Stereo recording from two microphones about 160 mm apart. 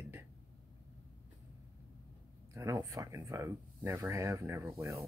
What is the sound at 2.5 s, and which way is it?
Speech, 20° right (ahead or behind).